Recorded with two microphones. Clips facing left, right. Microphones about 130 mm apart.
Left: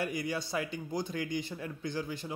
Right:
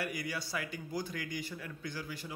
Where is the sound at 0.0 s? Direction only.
25° left (ahead or behind).